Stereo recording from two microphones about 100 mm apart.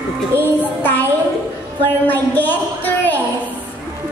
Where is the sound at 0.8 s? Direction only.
20° left (ahead or behind).